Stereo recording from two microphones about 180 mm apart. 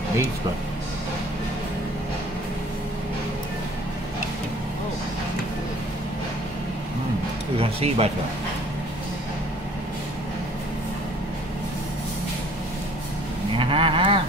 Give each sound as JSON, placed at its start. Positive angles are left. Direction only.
{"t": 7.5, "sound": "speech", "side_deg": -35}
{"t": 13.6, "sound": "livestock", "side_deg": -30}